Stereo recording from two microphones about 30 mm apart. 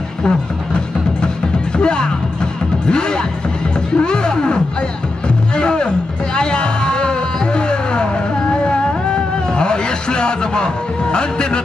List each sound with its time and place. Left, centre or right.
0.2 s music: left
2.9 s speech: left
3.9 s music: left
5.6 s music: left